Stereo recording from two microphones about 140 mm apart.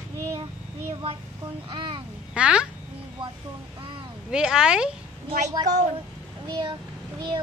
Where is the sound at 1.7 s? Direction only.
40° right (ahead or behind).